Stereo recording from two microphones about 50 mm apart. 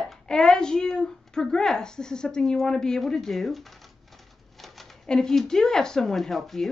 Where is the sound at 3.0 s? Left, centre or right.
Centre.